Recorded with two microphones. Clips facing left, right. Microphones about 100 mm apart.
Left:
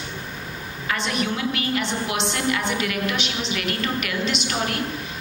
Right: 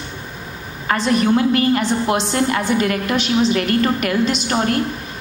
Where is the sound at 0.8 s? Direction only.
40° right (ahead or behind).